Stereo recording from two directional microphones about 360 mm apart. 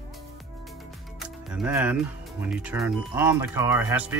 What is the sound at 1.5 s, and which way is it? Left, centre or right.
Speech, centre.